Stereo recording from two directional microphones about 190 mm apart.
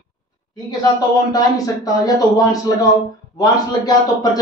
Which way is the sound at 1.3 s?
20° left (ahead or behind).